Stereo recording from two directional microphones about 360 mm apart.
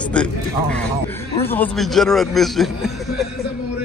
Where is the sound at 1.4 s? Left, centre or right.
Centre.